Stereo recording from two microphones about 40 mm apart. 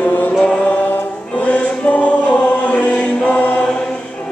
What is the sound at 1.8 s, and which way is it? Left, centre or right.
Choir, left.